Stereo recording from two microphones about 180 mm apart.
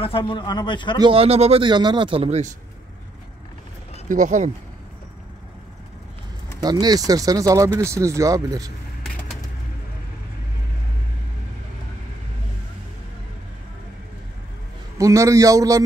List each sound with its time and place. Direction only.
0.2 s speech: 25° left (ahead or behind)
0.9 s a man's voice: 30° right (ahead or behind)
4.1 s speech: 45° right (ahead or behind)
6.6 s speech: 20° right (ahead or behind)
9.0 s bird: centre (ahead or behind)
15.0 s a man's voice: 15° right (ahead or behind)